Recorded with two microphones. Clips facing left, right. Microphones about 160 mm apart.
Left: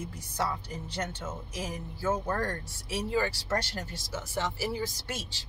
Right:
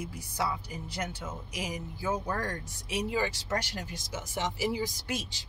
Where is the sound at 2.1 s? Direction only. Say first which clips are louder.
Left 2 dB; 45° left (ahead or behind).